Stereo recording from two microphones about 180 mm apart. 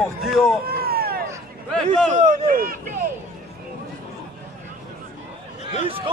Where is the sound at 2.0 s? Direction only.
40° right (ahead or behind).